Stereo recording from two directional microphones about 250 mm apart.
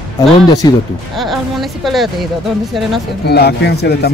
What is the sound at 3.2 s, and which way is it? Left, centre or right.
Speech, left.